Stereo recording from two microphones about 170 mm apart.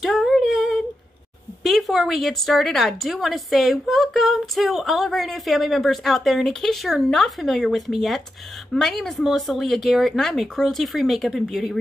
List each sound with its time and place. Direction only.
0.0 s humming: centre (ahead or behind)
1.6 s a woman's voice: centre (ahead or behind)